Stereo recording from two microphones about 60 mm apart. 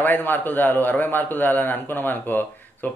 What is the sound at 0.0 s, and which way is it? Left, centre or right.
A man's voice, left.